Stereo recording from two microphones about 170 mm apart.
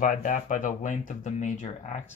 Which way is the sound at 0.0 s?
50° left (ahead or behind).